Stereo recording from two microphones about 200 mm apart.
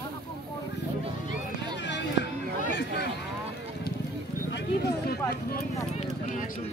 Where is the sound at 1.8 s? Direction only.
60° left (ahead or behind).